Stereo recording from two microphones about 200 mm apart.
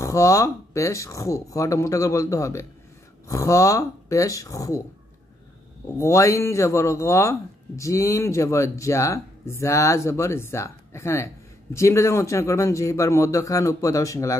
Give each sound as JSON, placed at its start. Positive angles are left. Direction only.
{"t": 0.0, "sound": "speech", "side_deg": 15}
{"t": 5.9, "sound": "speech", "side_deg": 15}